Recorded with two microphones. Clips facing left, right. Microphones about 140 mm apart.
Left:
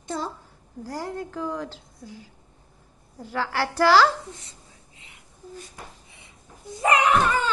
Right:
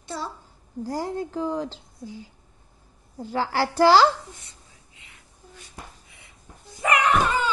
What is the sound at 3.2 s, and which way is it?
Speech, 30° right (ahead or behind).